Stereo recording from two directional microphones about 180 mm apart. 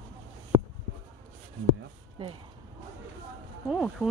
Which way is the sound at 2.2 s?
30° right (ahead or behind).